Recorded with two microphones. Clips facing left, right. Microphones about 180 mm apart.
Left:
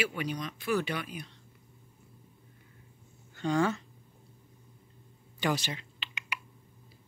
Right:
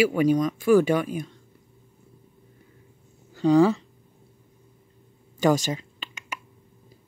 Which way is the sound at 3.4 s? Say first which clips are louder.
Right 10 dB; 35° right (ahead or behind).